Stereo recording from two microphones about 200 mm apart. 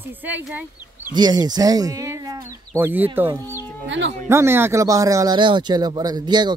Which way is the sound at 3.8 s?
65° right (ahead or behind).